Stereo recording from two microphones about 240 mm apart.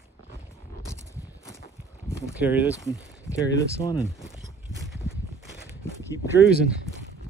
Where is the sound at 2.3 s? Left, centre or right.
Centre.